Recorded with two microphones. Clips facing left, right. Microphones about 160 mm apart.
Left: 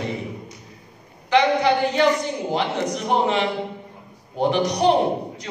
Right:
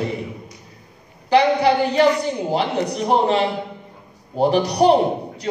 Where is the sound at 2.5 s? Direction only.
35° right (ahead or behind).